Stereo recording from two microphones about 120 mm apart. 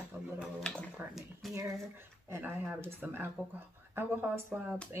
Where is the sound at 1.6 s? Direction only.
25° right (ahead or behind).